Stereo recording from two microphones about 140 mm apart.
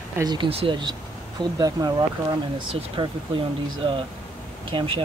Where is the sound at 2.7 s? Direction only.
40° right (ahead or behind).